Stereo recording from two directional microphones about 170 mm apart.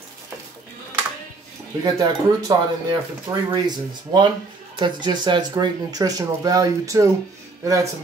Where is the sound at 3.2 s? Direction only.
25° right (ahead or behind).